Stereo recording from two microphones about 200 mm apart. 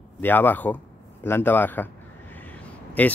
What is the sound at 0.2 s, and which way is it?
Speech, 10° left (ahead or behind).